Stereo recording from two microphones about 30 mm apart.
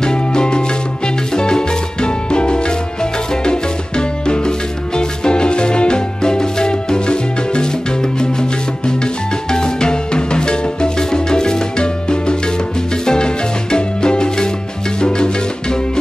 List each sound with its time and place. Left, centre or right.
0.0 s music: left